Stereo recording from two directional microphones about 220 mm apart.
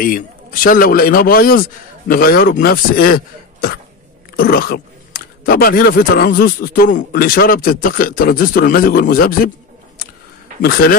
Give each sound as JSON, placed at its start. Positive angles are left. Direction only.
{"t": 0.7, "sound": "a man's voice", "side_deg": 40}
{"t": 4.4, "sound": "speech", "side_deg": 45}
{"t": 10.6, "sound": "a man's voice", "side_deg": 40}